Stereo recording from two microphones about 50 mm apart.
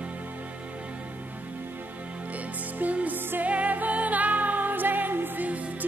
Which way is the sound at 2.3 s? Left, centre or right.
Right.